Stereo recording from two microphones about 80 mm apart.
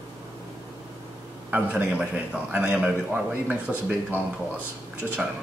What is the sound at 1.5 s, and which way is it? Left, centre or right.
Speech, centre.